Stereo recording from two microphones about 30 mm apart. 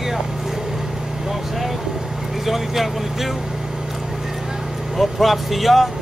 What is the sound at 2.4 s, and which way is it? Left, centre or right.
Speech, centre.